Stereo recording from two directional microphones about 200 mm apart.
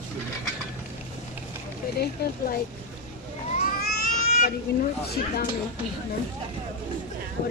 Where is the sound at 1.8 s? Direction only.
45° left (ahead or behind).